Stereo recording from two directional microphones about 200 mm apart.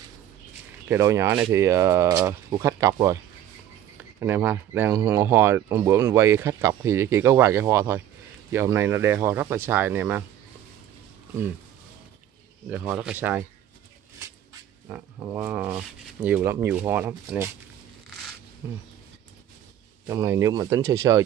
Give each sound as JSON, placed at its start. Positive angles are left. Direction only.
{"t": 0.8, "sound": "speech", "side_deg": -15}
{"t": 4.2, "sound": "speech", "side_deg": -10}
{"t": 12.6, "sound": "speech", "side_deg": -10}
{"t": 14.9, "sound": "speech", "side_deg": -15}
{"t": 20.1, "sound": "speech", "side_deg": -15}